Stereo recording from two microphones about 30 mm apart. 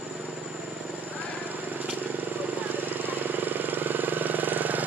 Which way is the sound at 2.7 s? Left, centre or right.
Right.